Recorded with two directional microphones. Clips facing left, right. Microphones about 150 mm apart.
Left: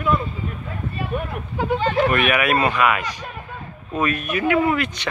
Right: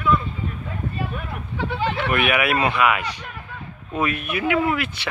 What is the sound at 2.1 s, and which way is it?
Speech, 10° right (ahead or behind).